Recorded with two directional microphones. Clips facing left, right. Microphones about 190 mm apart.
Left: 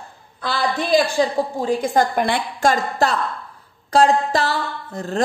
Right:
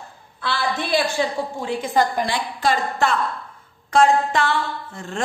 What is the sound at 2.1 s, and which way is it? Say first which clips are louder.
A woman's voice: left 3 dB; 60° left (ahead or behind).